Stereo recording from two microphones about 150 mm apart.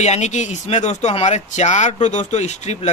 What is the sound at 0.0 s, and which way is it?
Speech, 50° left (ahead or behind).